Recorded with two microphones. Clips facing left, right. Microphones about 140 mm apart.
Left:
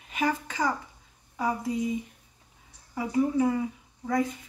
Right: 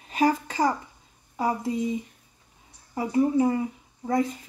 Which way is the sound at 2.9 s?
25° right (ahead or behind).